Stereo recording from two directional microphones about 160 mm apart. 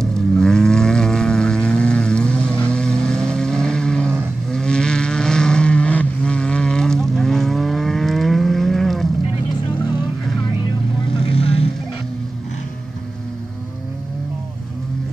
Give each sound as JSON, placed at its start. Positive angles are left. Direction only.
{"t": 0.0, "sound": "vehicle", "side_deg": 5}
{"t": 11.2, "sound": "vehicle", "side_deg": 40}